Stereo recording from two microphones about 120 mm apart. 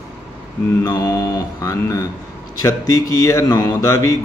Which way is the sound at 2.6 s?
30° left (ahead or behind).